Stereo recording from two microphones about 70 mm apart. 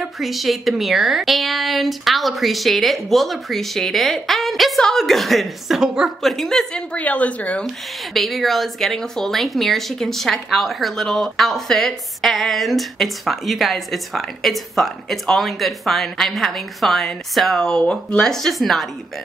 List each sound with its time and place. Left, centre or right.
0.0 s a woman's voice: centre
7.6 s speech: centre
18.3 s speech: centre